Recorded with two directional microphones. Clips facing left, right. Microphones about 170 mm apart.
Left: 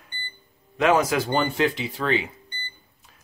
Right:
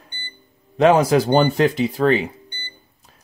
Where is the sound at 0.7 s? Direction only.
35° right (ahead or behind).